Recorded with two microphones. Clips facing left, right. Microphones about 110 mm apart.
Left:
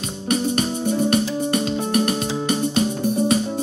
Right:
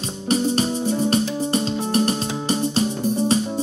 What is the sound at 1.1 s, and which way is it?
Music, 30° right (ahead or behind).